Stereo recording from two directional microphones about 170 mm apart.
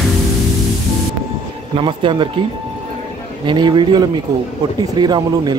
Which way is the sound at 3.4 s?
30° right (ahead or behind).